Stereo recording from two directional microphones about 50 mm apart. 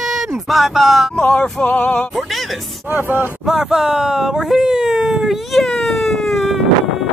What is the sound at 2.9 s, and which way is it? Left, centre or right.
Speech, right.